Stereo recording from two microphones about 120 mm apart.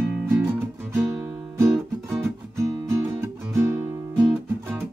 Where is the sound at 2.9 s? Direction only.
20° right (ahead or behind).